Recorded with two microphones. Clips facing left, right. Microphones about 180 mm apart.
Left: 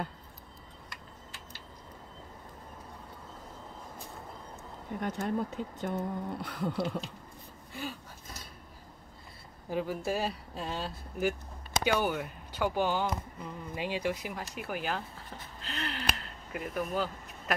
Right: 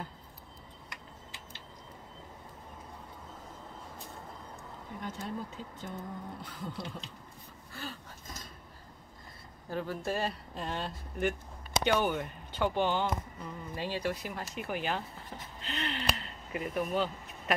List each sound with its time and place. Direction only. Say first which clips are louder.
5.0 s speech: left 7 dB; 65° left (ahead or behind)
7.7 s gasp: left 4 dB; 10° left (ahead or behind)
9.7 s speech: left 2 dB; 10° left (ahead or behind)
15.6 s a sound: right 1 dB; centre (ahead or behind)